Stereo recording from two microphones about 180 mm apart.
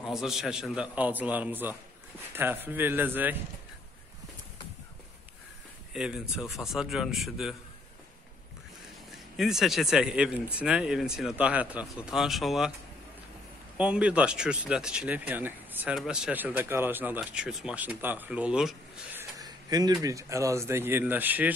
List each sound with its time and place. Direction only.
0.0 s speech: centre (ahead or behind)
5.9 s speech: 5° right (ahead or behind)
9.4 s speech: centre (ahead or behind)
13.7 s speech: 5° right (ahead or behind)
19.3 s speech: 20° right (ahead or behind)